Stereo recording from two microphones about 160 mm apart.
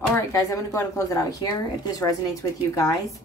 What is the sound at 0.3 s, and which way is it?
Speech, 20° left (ahead or behind).